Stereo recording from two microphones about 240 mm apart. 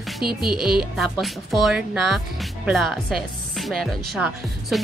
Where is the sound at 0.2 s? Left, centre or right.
Right.